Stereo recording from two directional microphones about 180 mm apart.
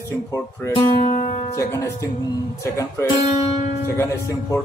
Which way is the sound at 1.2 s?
25° left (ahead or behind).